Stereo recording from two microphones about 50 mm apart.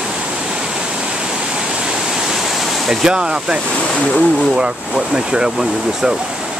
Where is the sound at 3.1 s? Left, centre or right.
Centre.